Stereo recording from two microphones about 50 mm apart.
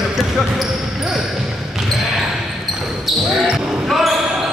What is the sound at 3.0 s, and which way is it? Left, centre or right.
Basketball bounce, centre.